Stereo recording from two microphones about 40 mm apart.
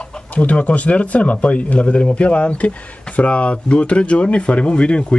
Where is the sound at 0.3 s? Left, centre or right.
Left.